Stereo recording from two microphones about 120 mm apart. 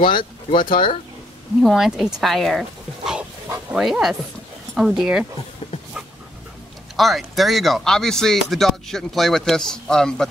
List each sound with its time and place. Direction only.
0.0 s speech: 40° left (ahead or behind)
1.6 s speech: centre (ahead or behind)
3.7 s speech: 5° right (ahead or behind)
7.0 s speech: centre (ahead or behind)